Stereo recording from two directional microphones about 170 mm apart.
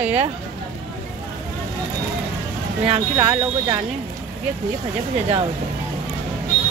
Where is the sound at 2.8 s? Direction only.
10° right (ahead or behind).